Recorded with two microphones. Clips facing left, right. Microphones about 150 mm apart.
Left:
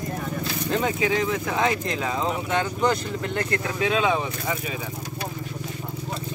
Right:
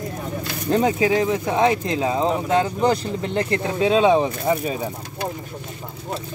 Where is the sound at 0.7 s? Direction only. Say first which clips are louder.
Right 6 dB; 35° right (ahead or behind).